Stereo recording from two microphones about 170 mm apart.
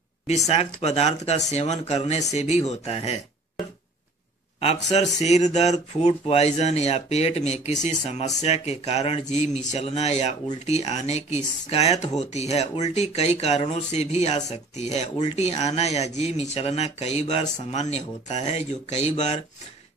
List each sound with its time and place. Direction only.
0.5 s speech: 35° left (ahead or behind)